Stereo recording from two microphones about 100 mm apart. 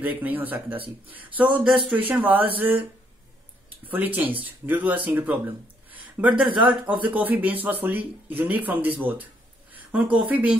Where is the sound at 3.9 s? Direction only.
15° right (ahead or behind).